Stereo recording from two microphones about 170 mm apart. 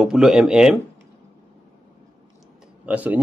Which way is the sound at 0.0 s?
5° right (ahead or behind).